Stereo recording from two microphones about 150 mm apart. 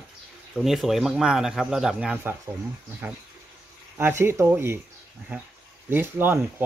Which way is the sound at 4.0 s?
15° right (ahead or behind).